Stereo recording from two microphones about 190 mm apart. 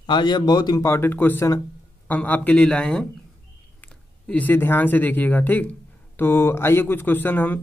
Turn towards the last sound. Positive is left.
turn(degrees=10)  # may be behind; listen again after turning